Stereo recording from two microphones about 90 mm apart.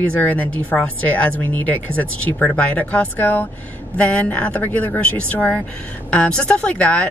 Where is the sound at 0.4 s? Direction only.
20° left (ahead or behind).